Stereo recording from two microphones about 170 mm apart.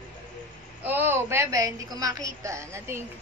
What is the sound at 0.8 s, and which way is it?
A woman's voice, 10° right (ahead or behind).